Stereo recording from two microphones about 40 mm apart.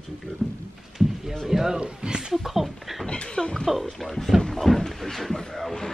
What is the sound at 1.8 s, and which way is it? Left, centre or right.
Speech, right.